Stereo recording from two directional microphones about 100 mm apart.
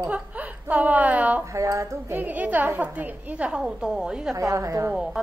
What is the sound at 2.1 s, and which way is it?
A woman's voice, 15° right (ahead or behind).